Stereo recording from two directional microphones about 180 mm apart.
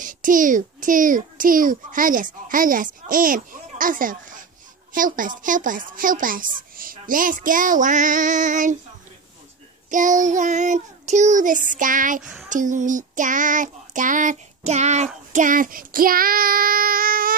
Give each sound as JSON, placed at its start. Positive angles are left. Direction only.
{"t": 0.0, "sound": "a child's voice", "side_deg": -50}
{"t": 9.8, "sound": "a child's voice", "side_deg": -45}
{"t": 12.2, "sound": "a sound", "side_deg": -5}
{"t": 12.4, "sound": "a child's voice", "side_deg": -45}
{"t": 15.3, "sound": "child singing", "side_deg": -45}